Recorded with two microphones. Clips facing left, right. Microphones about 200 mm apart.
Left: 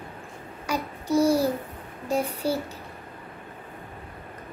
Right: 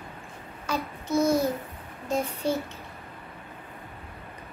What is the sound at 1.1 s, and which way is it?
Speech, 35° left (ahead or behind).